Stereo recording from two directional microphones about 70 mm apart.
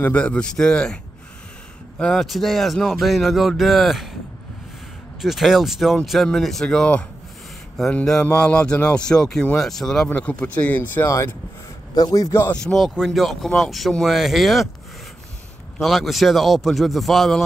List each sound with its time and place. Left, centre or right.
0.1 s speech: centre
2.0 s speech: centre
5.2 s speech: centre
7.9 s speech: centre
8.2 s speech: centre
10.0 s speech: left
11.9 s a man's voice: left
12.2 s speech: left
12.5 s speech: centre
15.8 s speech: centre